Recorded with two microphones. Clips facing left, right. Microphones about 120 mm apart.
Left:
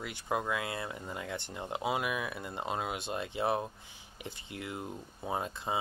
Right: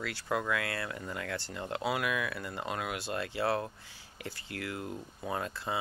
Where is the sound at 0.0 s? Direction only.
20° left (ahead or behind).